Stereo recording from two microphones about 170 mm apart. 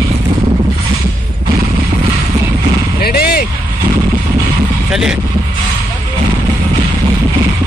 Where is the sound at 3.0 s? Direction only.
65° left (ahead or behind).